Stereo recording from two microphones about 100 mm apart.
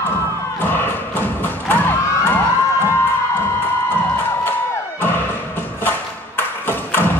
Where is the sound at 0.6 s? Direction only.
20° left (ahead or behind).